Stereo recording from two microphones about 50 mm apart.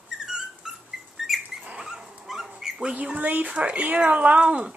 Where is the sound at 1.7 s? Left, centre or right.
Centre.